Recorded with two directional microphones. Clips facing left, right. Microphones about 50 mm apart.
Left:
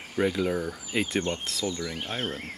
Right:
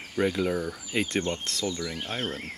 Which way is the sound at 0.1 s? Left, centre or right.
Centre.